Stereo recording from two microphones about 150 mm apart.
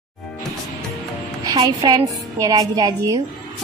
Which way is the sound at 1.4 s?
25° right (ahead or behind).